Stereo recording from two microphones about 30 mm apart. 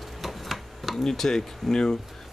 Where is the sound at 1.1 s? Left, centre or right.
Centre.